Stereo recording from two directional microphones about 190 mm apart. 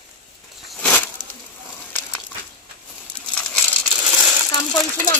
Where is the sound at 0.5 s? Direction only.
5° left (ahead or behind).